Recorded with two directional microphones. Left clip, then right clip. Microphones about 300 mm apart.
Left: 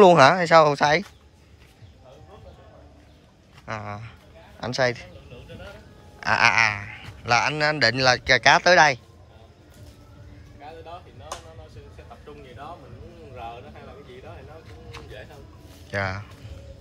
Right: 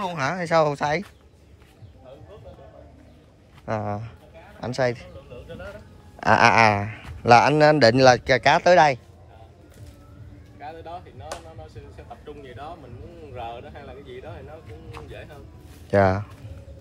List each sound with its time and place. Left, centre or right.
0.0 s a man's voice: centre
3.6 s a man's voice: centre
6.1 s a man's voice: centre
15.9 s speech: centre